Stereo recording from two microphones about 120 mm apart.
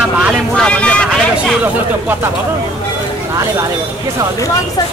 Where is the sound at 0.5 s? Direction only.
10° left (ahead or behind).